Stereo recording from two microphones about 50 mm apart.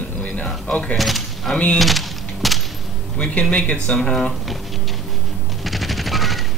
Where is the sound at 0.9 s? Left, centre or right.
Centre.